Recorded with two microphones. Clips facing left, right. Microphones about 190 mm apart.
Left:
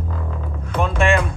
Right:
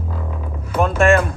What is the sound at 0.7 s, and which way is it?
Music, 5° right (ahead or behind).